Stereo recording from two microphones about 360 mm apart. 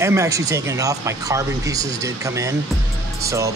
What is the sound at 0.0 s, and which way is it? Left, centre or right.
Speech, centre.